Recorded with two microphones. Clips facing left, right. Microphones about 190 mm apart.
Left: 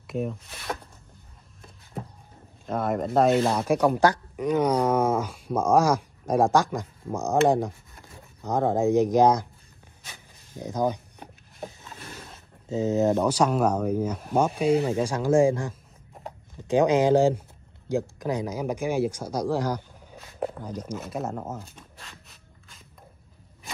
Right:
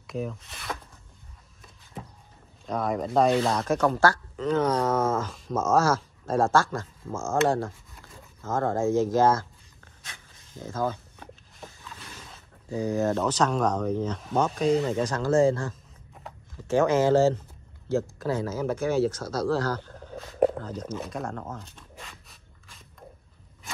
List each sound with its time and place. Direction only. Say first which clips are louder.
0.0 s speech: left 3 dB; centre (ahead or behind)
2.6 s speech: left 1 dB; centre (ahead or behind)
10.6 s speech: left 3 dB; 15° left (ahead or behind)
12.6 s speech: left 3 dB; 20° left (ahead or behind)
20.3 s a sound: right 8 dB; 60° right (ahead or behind)
20.6 s speech: even; 10° left (ahead or behind)
21.5 s a sound: left 1 dB; 5° left (ahead or behind)